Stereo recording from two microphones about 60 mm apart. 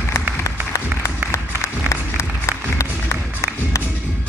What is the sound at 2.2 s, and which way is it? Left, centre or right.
Music, left.